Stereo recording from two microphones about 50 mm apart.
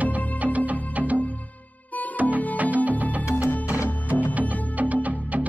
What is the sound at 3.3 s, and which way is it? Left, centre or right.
Music, left.